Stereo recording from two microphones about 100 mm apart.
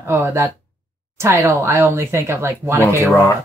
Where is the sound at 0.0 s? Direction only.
25° right (ahead or behind).